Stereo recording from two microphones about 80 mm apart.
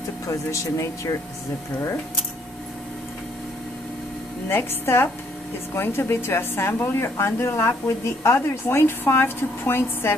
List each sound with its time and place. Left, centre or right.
0.3 s a woman's voice: left
4.5 s a woman's voice: left